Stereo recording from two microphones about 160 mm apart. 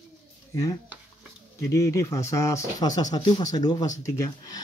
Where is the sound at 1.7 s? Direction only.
20° left (ahead or behind).